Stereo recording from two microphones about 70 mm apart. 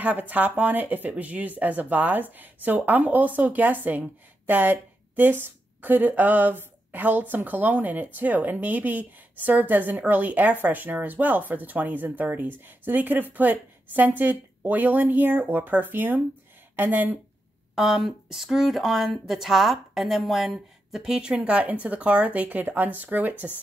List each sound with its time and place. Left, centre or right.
0.0 s a woman's voice: right
17.7 s a woman's voice: centre; by 23.3 s right